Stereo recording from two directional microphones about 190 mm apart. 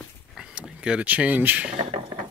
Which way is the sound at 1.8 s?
25° right (ahead or behind).